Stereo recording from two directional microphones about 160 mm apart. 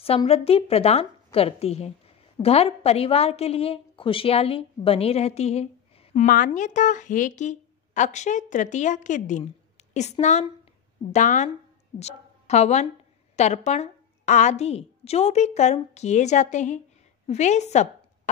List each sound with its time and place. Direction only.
0.0 s a woman's voice: 35° left (ahead or behind)
6.2 s a woman's voice: 60° left (ahead or behind)